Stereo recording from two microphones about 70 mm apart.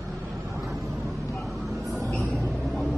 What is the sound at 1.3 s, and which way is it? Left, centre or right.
Vehicle, centre.